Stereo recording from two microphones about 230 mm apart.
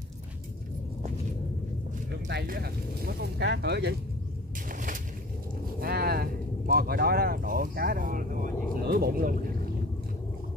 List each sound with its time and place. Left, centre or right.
2.2 s speech: right
5.8 s a sound: right
6.7 s speech: right